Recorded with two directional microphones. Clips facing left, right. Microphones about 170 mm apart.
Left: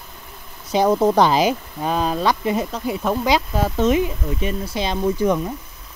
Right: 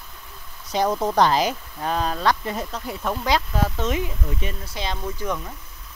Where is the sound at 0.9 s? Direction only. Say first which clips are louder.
Left 7 dB; 25° left (ahead or behind).